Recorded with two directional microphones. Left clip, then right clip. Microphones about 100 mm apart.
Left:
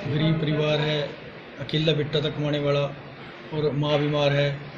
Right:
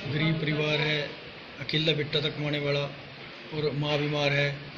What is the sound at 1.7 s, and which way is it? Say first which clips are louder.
A man's voice: left 2 dB; 25° right (ahead or behind).